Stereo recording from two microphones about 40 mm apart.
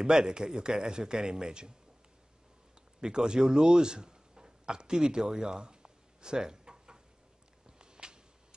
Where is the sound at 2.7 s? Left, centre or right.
Centre.